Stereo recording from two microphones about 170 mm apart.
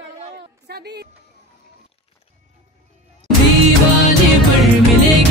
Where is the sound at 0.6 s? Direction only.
75° right (ahead or behind).